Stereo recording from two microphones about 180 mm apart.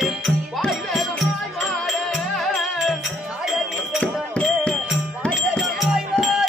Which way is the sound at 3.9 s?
5° left (ahead or behind).